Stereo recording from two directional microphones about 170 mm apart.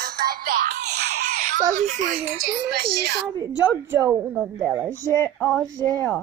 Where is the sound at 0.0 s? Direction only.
65° right (ahead or behind).